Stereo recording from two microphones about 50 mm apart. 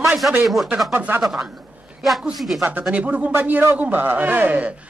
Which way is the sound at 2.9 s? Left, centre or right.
Right.